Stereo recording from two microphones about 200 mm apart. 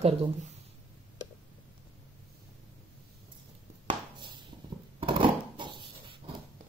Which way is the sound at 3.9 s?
25° right (ahead or behind).